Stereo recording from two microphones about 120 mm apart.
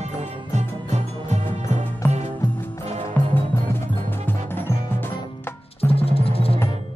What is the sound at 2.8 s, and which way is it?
Music, 60° right (ahead or behind).